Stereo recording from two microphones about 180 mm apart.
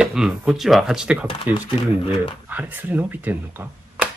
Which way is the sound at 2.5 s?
10° right (ahead or behind).